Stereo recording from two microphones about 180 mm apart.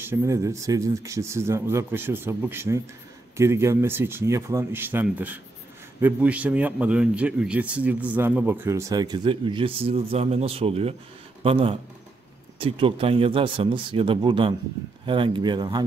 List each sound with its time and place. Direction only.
0.0 s a man's voice: 15° right (ahead or behind)